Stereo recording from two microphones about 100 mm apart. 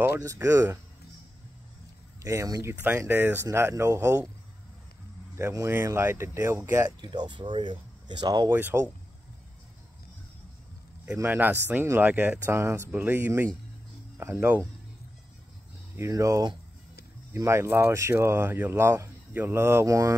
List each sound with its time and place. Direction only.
0.2 s speech: 30° right (ahead or behind)
2.2 s speech: 35° right (ahead or behind)
2.7 s speech: 15° right (ahead or behind)
5.4 s speech: 30° right (ahead or behind)
7.0 s speech: 50° right (ahead or behind)
8.5 s speech: 20° right (ahead or behind)
11.2 s speech: 20° right (ahead or behind)
16.0 s speech: 30° right (ahead or behind)